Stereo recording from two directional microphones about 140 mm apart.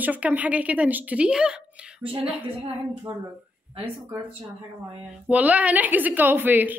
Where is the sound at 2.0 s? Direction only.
45° right (ahead or behind).